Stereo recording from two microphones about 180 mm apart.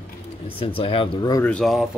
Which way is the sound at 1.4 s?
5° left (ahead or behind).